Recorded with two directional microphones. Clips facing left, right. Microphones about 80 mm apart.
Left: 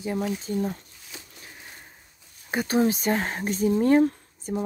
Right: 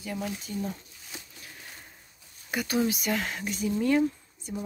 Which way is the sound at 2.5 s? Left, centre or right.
Left.